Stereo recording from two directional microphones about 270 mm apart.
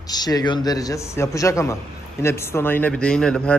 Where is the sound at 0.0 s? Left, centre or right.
Centre.